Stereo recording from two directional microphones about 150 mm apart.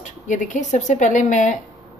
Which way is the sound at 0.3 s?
55° left (ahead or behind).